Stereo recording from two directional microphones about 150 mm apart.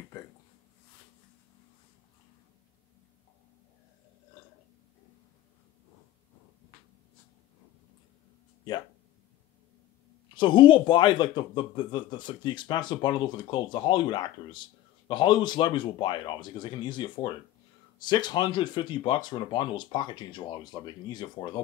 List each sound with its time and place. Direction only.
10.3 s a man's voice: 35° left (ahead or behind)